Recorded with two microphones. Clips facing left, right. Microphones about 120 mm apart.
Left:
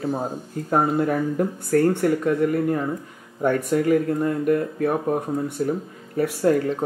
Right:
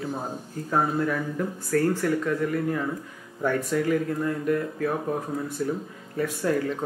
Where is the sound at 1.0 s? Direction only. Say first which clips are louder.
Left 5 dB; 45° left (ahead or behind).